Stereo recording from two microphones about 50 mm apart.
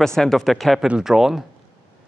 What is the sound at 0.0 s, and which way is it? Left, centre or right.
Speech, centre.